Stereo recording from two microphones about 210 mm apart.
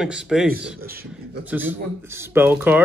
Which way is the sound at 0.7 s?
45° right (ahead or behind).